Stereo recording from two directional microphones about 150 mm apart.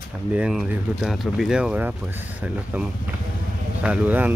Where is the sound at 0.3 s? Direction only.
5° right (ahead or behind).